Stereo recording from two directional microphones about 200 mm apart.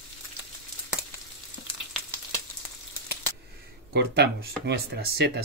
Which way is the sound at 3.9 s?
55° right (ahead or behind).